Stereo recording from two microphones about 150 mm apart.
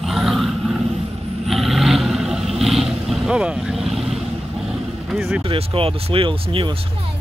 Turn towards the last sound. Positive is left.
turn(degrees=-35)  # may be behind; listen again after turning